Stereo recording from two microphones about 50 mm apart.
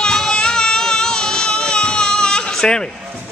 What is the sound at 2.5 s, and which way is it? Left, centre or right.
Bleat, centre.